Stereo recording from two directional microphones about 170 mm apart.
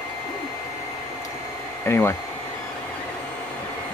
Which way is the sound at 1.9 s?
10° left (ahead or behind).